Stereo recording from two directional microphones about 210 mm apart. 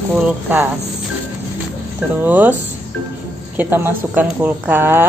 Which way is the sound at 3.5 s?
10° right (ahead or behind).